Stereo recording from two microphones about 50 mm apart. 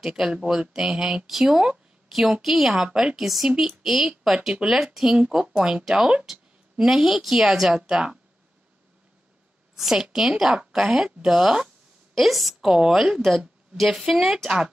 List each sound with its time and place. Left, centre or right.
0.0 s speech: centre
2.0 s a woman's voice: centre
3.2 s speech: centre
5.3 s speech: centre
9.8 s a woman's voice: centre
12.2 s speech: centre